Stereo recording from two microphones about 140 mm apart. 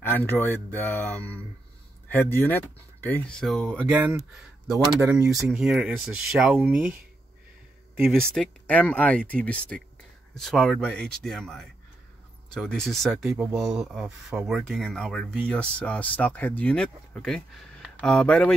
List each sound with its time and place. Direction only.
0.0 s speech: 15° left (ahead or behind)
3.7 s speech: 15° right (ahead or behind)
8.1 s speech: 5° left (ahead or behind)